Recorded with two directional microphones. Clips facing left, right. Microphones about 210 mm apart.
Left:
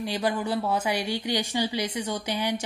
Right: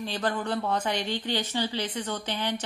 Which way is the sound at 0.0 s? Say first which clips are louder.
Left 2 dB; 10° left (ahead or behind).